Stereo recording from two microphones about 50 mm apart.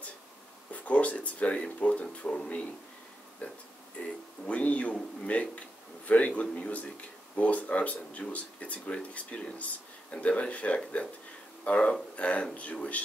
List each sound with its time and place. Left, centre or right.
0.7 s speech: left
3.4 s speech: left